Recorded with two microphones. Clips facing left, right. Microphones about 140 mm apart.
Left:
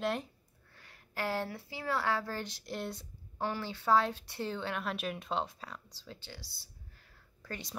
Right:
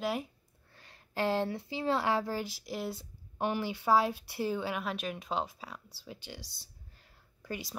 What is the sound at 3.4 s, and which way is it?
Speech, 15° right (ahead or behind).